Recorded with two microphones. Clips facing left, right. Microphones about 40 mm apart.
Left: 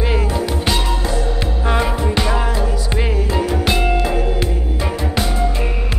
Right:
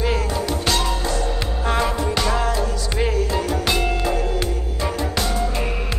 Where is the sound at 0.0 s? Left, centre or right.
Centre.